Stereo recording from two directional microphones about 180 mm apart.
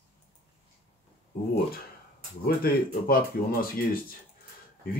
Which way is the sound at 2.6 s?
55° left (ahead or behind).